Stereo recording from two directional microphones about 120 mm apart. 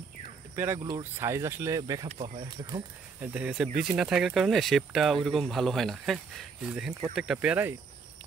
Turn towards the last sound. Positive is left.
turn(degrees=-15)  # may be behind; listen again after turning